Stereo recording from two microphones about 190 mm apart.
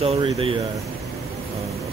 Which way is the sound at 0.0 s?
30° right (ahead or behind).